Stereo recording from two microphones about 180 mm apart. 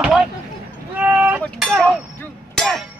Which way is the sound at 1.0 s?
10° right (ahead or behind).